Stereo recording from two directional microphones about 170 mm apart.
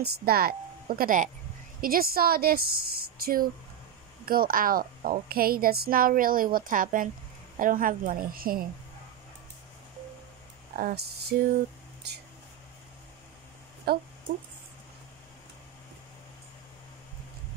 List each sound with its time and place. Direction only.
0.0 s speech: 60° right (ahead or behind)
10.8 s speech: 55° right (ahead or behind)
13.9 s speech: 65° right (ahead or behind)